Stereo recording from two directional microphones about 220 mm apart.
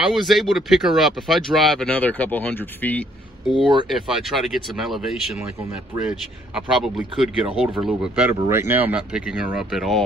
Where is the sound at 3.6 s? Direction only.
20° right (ahead or behind).